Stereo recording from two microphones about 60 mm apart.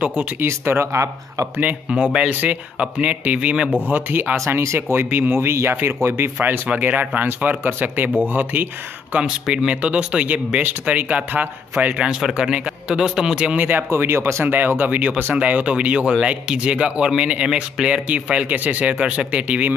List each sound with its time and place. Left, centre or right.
0.0 s speech: right
0.4 s speech: right
2.1 s speech: centre
4.6 s speech: right
6.7 s speech: right
9.2 s speech: centre
12.0 s speech: centre
13.6 s speech: right
13.8 s speech: right